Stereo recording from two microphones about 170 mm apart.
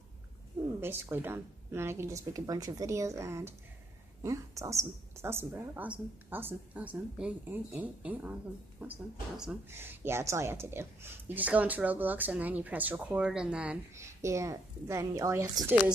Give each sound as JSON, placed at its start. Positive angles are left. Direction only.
{"t": 0.7, "sound": "a woman's voice", "side_deg": -15}
{"t": 13.9, "sound": "speech", "side_deg": -15}